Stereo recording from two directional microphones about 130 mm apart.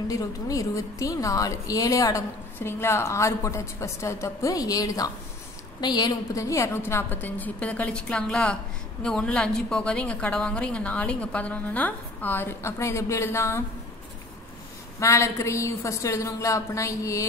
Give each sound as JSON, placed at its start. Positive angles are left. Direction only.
{"t": 0.1, "sound": "a woman's voice", "side_deg": 25}
{"t": 15.0, "sound": "a woman's voice", "side_deg": 20}